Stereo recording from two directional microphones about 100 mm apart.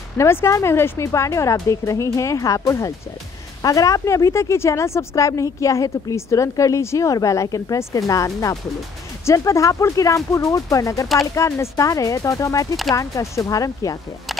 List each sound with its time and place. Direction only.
0.2 s a woman's voice: 25° left (ahead or behind)